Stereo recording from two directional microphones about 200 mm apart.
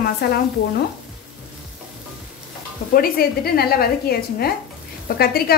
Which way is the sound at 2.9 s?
50° left (ahead or behind).